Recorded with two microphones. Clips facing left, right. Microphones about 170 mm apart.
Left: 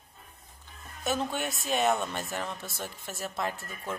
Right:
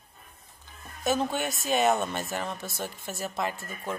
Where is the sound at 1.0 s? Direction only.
Centre (ahead or behind).